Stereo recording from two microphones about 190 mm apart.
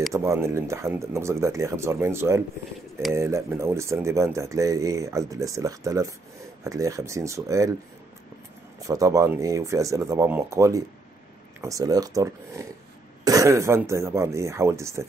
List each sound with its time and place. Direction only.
0.1 s speech: 15° right (ahead or behind)
8.7 s speech: 20° right (ahead or behind)